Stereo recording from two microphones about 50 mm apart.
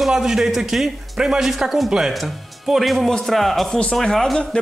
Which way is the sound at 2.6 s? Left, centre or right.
Centre.